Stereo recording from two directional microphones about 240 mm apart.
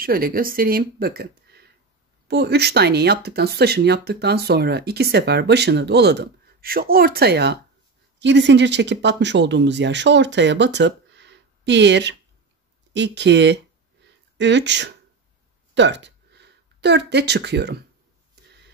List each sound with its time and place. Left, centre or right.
0.0 s speech: right